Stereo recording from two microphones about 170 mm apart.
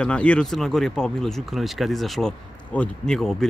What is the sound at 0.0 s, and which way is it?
Speech, 5° left (ahead or behind).